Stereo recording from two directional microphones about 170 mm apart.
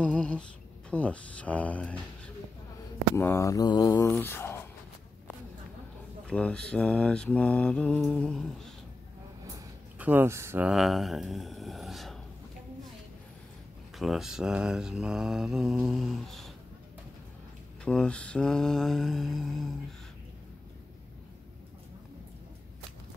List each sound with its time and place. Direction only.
0.0 s mantra: 5° left (ahead or behind)
3.2 s mantra: 15° left (ahead or behind)
6.2 s mantra: 5° left (ahead or behind)
9.9 s speech: 10° right (ahead or behind)
10.7 s speech: centre (ahead or behind)
13.9 s mantra: centre (ahead or behind)
17.8 s mantra: 5° left (ahead or behind)